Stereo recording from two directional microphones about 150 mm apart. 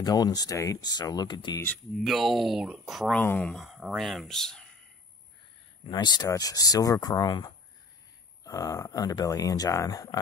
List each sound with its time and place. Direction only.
0.0 s speech: 25° left (ahead or behind)
2.0 s speech: centre (ahead or behind)
3.2 s speech: 10° left (ahead or behind)
5.9 s speech: 30° left (ahead or behind)